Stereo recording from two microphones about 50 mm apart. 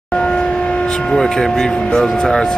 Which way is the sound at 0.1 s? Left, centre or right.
Left.